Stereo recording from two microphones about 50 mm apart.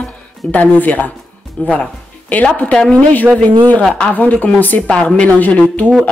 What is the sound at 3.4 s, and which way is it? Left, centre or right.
Speech, left.